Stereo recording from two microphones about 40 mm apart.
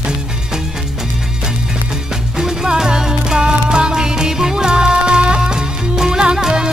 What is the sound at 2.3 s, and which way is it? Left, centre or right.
Music, centre.